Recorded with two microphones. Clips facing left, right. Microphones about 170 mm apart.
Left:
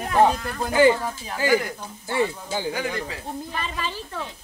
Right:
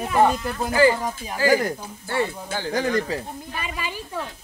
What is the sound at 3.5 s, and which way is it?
Speech, 10° right (ahead or behind).